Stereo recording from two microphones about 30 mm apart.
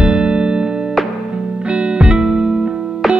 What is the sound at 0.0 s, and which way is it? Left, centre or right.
Music, right.